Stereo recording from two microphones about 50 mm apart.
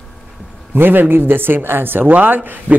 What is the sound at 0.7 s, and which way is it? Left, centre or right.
A man's voice, right.